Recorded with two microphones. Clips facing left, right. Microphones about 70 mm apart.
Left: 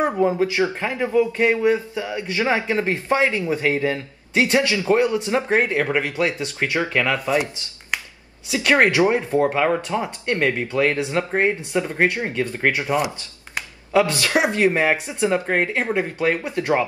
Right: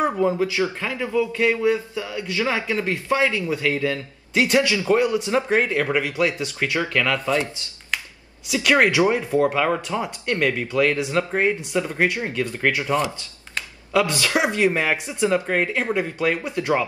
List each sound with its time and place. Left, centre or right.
0.0 s speech: left
8.5 s speech: left
13.6 s a sound: left
14.2 s speech: left